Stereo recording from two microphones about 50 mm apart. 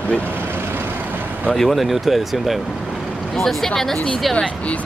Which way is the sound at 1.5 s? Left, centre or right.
Centre.